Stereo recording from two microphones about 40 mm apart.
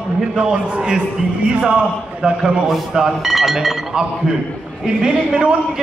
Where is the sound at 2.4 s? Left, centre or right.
Centre.